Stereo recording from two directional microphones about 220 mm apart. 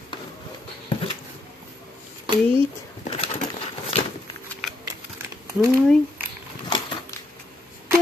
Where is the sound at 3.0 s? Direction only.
30° left (ahead or behind).